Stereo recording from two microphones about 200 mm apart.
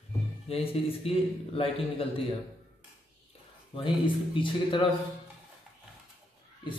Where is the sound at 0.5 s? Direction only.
30° left (ahead or behind).